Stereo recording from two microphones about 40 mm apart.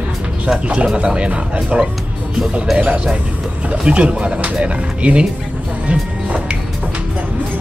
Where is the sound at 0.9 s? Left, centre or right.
Right.